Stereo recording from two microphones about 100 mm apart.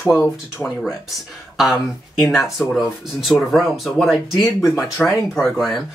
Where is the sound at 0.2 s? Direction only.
15° left (ahead or behind).